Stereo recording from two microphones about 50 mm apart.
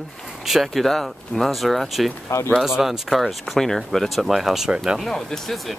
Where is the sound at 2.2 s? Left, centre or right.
Left.